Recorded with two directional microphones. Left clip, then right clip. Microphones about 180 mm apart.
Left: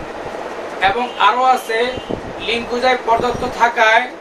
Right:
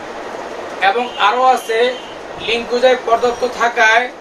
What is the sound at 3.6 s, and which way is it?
Speech, 10° left (ahead or behind).